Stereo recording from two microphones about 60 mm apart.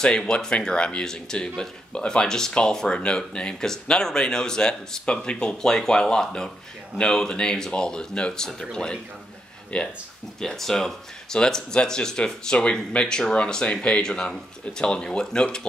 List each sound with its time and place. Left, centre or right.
0.0 s speech: centre
10.4 s speech: centre